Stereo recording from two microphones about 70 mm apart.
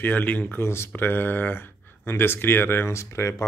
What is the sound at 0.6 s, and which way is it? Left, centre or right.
A man's voice, left.